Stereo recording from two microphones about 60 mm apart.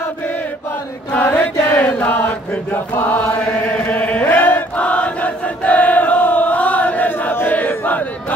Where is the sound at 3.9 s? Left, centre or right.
Left.